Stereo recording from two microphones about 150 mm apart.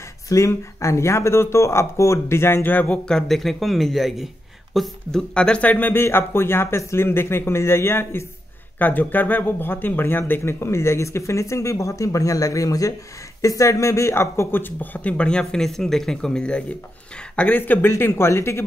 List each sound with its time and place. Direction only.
0.3 s speech: 20° left (ahead or behind)